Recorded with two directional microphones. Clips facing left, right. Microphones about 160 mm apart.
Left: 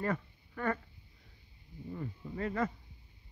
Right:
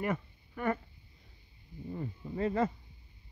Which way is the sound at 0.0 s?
20° right (ahead or behind).